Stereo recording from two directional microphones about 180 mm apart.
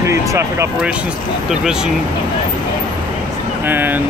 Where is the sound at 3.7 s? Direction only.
10° right (ahead or behind).